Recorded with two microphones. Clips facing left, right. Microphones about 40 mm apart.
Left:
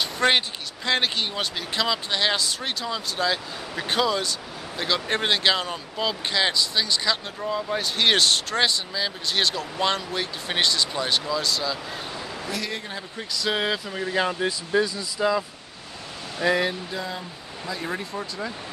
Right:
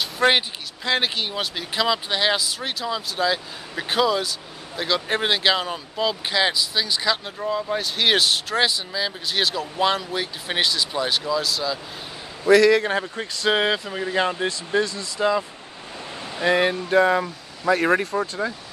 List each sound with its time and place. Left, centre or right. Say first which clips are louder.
0.0 s a sound: right 2 dB; centre
0.8 s speech: right 1 dB; centre
12.4 s a man's voice: right 18 dB; right
13.1 s speech: right 4 dB; right
13.8 s speech: right 2 dB; centre
16.4 s speech: right 2 dB; centre
16.9 s speech: right 14 dB; right
18.1 s speech: right 7 dB; right